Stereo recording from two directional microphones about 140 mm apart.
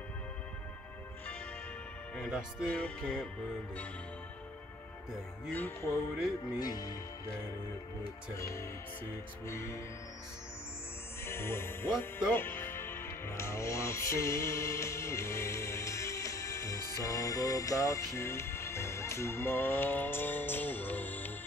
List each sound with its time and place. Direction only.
2.1 s speech: centre (ahead or behind)
2.7 s music: 10° left (ahead or behind)
5.5 s music: 15° left (ahead or behind)
6.6 s speech: 25° left (ahead or behind)
8.4 s speech: 20° left (ahead or behind)
11.2 s speech: 15° left (ahead or behind)